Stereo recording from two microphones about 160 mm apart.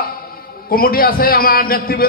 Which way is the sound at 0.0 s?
65° left (ahead or behind).